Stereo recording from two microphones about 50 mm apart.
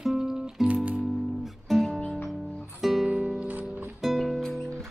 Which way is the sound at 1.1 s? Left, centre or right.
Centre.